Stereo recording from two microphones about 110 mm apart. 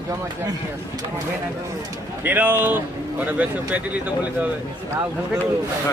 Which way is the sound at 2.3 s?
20° right (ahead or behind).